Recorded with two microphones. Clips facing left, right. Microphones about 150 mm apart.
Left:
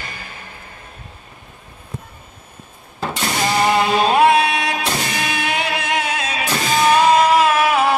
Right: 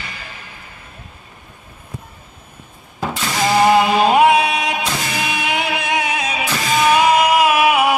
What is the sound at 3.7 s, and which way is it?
Music, 15° right (ahead or behind).